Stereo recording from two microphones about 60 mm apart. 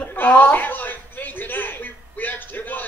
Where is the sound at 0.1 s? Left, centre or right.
Left.